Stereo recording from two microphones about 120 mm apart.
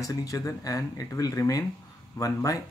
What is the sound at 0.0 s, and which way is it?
Speech, 30° left (ahead or behind).